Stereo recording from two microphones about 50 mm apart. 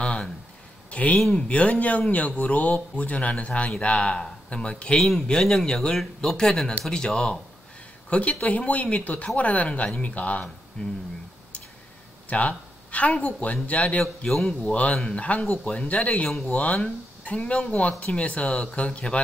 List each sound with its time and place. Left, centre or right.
0.0 s a sound: left
0.8 s speech: left
8.1 s speech: left
12.3 s speech: left
14.2 s speech: centre
14.7 s speech: left
15.6 s speech: centre
15.9 s speech: left